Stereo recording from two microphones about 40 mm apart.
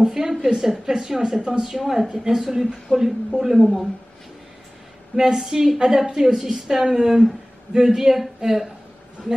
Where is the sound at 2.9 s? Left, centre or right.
Centre.